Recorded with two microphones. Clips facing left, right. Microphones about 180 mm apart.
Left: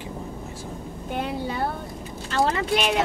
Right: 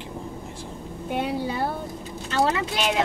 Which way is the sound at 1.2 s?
Centre (ahead or behind).